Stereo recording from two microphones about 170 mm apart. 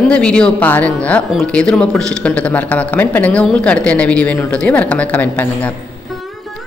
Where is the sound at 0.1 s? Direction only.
5° left (ahead or behind).